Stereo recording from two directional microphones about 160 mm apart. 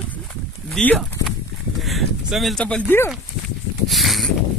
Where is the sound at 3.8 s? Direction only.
Centre (ahead or behind).